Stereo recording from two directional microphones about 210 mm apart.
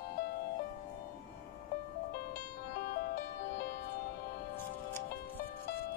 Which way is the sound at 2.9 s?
50° left (ahead or behind).